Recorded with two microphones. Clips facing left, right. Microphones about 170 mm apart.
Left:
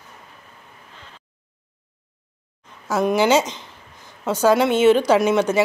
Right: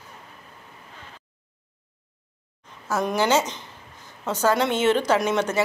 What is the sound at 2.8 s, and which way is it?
A woman's voice, 10° left (ahead or behind).